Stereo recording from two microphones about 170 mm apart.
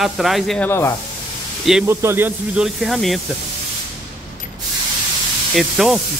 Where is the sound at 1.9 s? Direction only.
15° right (ahead or behind).